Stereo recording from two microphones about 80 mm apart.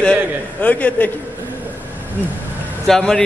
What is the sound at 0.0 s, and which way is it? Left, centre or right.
A man's voice, centre.